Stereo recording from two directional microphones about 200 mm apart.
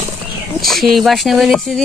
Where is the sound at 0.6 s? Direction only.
Centre (ahead or behind).